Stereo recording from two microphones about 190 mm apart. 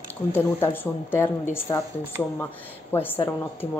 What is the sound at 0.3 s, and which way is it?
Speech, 10° left (ahead or behind).